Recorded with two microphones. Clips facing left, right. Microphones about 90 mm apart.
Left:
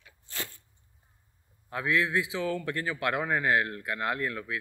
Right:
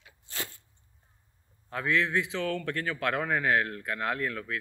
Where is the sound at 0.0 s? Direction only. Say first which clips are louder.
Right 1 dB; 20° right (ahead or behind).